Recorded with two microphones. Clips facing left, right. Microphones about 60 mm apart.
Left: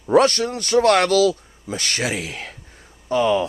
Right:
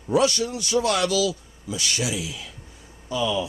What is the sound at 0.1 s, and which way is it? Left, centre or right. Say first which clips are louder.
Speech: left 5 dB; left.